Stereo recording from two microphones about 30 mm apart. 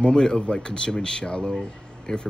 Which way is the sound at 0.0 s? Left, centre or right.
Left.